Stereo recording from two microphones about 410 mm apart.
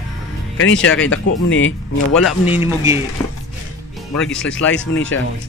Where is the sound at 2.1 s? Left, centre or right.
Centre.